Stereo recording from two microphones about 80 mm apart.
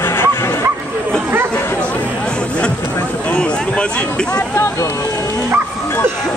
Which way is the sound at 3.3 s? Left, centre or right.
Centre.